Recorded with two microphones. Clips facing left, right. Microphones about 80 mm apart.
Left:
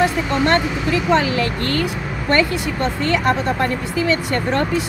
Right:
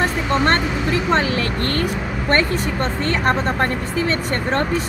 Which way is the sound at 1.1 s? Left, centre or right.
Right.